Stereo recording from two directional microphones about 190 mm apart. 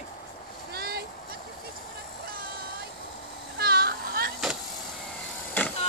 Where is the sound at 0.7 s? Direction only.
55° right (ahead or behind).